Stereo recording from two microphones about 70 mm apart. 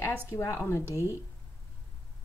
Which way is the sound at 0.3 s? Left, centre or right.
Left.